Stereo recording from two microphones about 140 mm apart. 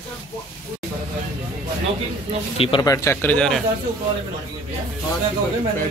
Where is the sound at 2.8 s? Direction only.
25° left (ahead or behind).